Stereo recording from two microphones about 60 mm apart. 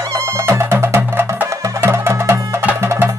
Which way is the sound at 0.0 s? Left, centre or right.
Right.